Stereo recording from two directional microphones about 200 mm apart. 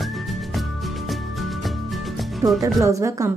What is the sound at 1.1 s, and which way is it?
Music, centre (ahead or behind).